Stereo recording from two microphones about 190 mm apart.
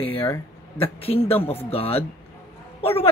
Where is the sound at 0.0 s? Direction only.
10° left (ahead or behind).